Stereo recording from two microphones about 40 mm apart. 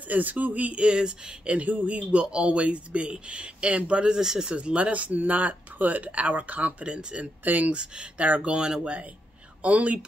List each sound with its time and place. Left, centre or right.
0.1 s speech: right
0.8 s speech: right
4.2 s speech: centre
4.6 s speech: right
6.9 s speech: right
7.4 s speech: right
7.7 s speech: right
8.8 s speech: right